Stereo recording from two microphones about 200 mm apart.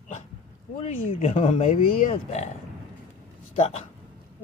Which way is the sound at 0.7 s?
30° left (ahead or behind).